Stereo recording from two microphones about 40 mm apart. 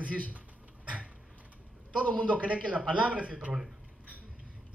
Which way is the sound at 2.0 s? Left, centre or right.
Left.